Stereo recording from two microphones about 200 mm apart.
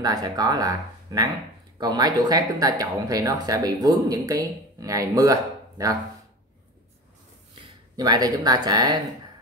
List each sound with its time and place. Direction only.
0.0 s speech: 20° right (ahead or behind)
7.9 s speech: 20° right (ahead or behind)